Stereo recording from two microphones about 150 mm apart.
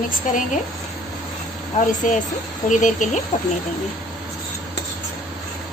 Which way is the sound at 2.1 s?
60° left (ahead or behind).